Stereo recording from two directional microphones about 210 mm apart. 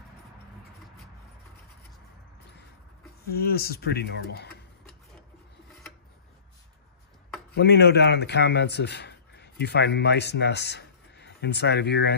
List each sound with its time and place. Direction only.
3.3 s speech: 45° left (ahead or behind)
7.5 s speech: 50° left (ahead or behind)